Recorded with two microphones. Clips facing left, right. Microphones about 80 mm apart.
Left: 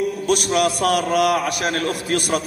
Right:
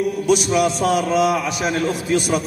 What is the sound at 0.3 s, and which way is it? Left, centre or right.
A man's voice, left.